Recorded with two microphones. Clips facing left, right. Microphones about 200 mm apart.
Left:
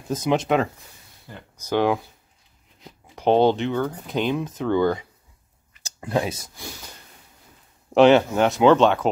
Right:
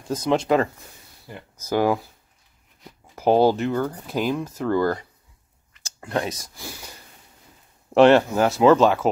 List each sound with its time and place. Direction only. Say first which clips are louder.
0.1 s speech: right 1 dB; centre (ahead or behind)
1.7 s speech: even; 5° right (ahead or behind)
3.2 s speech: even; 5° right (ahead or behind)
5.9 s speech: left 2 dB; 15° left (ahead or behind)
7.9 s speech: even; centre (ahead or behind)